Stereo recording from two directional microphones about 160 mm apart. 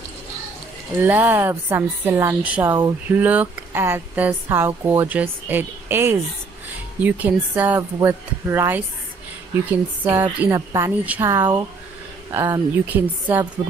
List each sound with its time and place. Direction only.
1.0 s a woman's voice: 10° right (ahead or behind)